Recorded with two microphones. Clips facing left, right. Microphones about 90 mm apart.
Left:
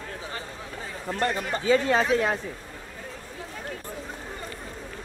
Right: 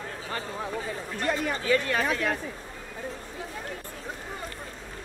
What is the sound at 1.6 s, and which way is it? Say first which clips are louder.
Speech: left 5 dB; 20° left (ahead or behind).